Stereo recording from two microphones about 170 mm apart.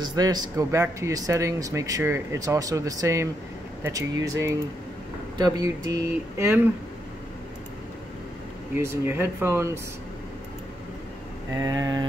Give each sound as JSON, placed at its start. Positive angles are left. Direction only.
{"t": 0.0, "sound": "speech", "side_deg": -25}
{"t": 8.7, "sound": "speech", "side_deg": -15}
{"t": 11.5, "sound": "speech", "side_deg": -20}